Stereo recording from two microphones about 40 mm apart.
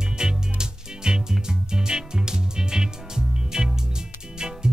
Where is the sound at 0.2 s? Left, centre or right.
Centre.